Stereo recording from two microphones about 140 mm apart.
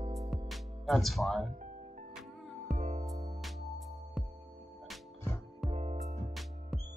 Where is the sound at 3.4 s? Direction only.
Centre (ahead or behind).